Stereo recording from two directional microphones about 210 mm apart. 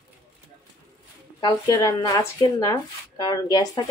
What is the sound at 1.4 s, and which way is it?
Speech, 15° left (ahead or behind).